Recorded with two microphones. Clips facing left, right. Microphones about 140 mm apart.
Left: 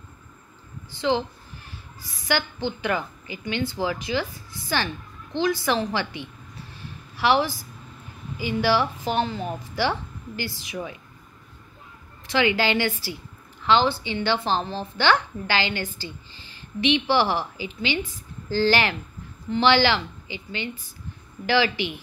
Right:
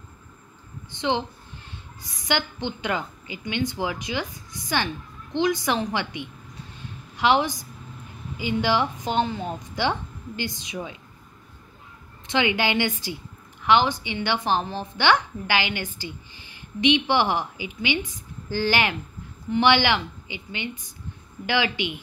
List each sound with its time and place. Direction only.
0.9 s a woman's voice: 20° right (ahead or behind)
12.3 s a woman's voice: 20° right (ahead or behind)